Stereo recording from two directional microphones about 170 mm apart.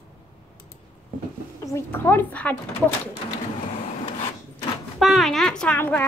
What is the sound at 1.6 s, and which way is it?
Speech, 15° left (ahead or behind).